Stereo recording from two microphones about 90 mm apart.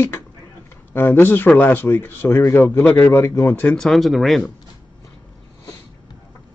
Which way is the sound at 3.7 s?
Centre (ahead or behind).